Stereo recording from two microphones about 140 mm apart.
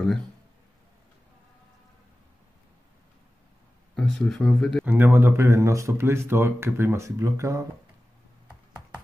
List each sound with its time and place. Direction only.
3.9 s speech: 5° left (ahead or behind)
4.8 s speech: 15° right (ahead or behind)